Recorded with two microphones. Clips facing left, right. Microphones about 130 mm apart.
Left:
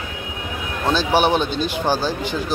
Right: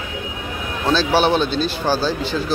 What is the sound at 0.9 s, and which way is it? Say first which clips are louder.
Speech: right 1 dB; 15° left (ahead or behind).